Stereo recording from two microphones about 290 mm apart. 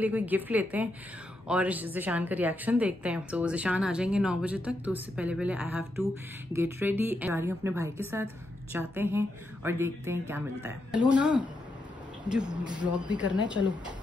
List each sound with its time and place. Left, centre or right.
0.0 s a woman's voice: centre
12.6 s speech: centre
13.6 s speech: left